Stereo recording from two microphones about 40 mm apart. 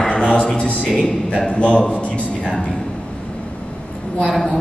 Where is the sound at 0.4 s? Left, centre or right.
Centre.